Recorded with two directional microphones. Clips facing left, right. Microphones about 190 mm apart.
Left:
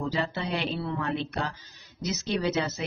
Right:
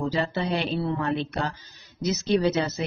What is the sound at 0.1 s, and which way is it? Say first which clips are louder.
Speech: right 4 dB; 35° right (ahead or behind).